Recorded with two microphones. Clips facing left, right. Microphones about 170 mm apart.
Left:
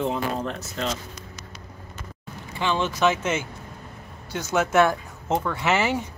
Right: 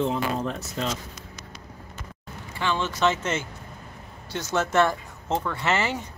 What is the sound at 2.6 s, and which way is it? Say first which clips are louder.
Speech: left 2 dB; 15° left (ahead or behind).